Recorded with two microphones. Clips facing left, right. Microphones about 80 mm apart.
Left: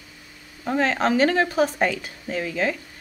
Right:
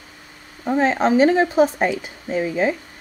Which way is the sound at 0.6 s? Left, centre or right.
Centre.